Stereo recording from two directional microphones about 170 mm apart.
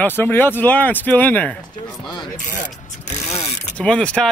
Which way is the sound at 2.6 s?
40° left (ahead or behind).